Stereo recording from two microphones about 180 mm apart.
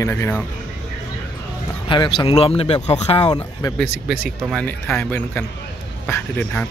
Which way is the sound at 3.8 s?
60° right (ahead or behind).